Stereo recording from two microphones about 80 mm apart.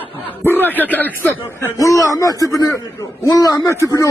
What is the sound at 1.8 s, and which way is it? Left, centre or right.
Speech, left.